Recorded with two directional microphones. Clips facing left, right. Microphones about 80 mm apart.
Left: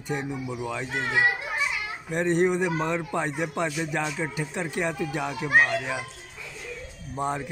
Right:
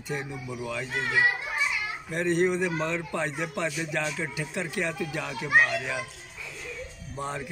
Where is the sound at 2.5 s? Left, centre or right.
Centre; by 4.9 s left.